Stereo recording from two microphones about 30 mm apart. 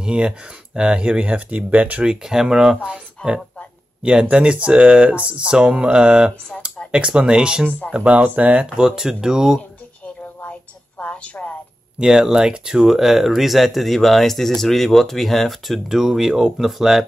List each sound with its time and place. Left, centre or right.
0.0 s speech: right
0.7 s mantra: right
1.2 s speech: right
2.4 s speech: right
3.2 s speech: left
4.2 s speech: right
5.4 s mantra: right
7.2 s speech: right
8.0 s speech: right
8.6 s speech: right
11.1 s a sound: left
12.1 s speech: centre
12.9 s speech: centre
15.9 s speech: centre